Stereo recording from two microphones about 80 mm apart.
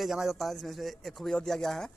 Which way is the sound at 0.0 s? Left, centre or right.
Centre.